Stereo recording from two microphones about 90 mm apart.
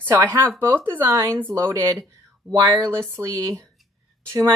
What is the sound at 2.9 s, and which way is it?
Speech, 25° right (ahead or behind).